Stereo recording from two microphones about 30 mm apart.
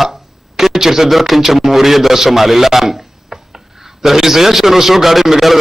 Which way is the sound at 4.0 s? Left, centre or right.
Centre.